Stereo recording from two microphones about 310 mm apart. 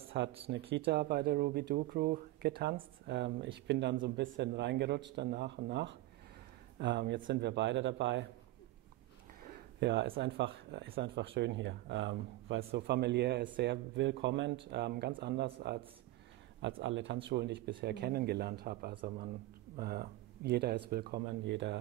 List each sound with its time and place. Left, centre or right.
0.2 s speech: right
9.8 s speech: right